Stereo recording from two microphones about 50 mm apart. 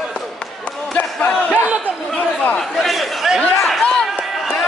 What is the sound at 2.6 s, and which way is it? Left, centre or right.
Chatter, centre.